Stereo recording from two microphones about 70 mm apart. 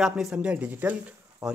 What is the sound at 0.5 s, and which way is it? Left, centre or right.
Speech, right.